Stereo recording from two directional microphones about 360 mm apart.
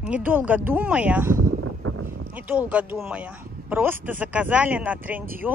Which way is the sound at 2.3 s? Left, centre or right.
Centre.